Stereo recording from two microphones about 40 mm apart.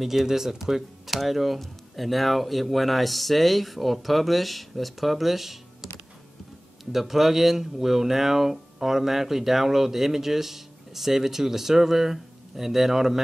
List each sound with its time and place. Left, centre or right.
0.0 s speech: centre